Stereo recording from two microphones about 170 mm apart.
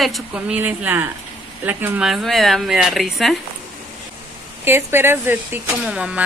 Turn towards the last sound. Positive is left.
turn(degrees=-5)  # may be behind; listen again after turning